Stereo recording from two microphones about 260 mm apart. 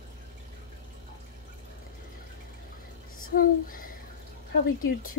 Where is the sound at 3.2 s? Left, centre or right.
Left.